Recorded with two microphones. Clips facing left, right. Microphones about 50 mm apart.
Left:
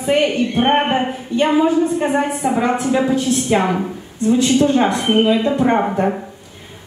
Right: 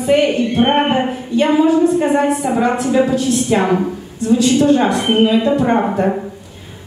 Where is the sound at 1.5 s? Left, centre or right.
Centre.